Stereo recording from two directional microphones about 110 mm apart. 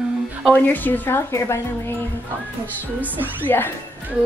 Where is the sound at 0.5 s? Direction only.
15° left (ahead or behind).